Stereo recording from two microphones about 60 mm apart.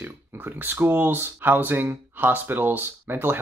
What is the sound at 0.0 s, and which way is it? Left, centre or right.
Speech, right.